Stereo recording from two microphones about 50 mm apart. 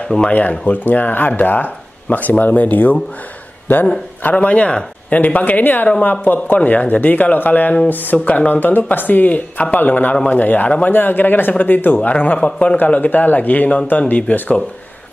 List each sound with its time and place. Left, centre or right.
0.3 s a man's voice: left
4.2 s speech: left
12.4 s speech: left